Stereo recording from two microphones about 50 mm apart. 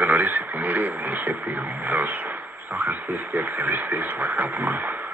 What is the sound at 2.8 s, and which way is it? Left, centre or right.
Speech, right.